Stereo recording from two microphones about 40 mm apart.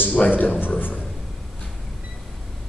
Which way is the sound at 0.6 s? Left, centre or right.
Left.